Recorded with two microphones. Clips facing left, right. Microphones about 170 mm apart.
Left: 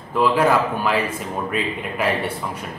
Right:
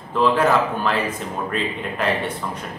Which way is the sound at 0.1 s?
10° left (ahead or behind).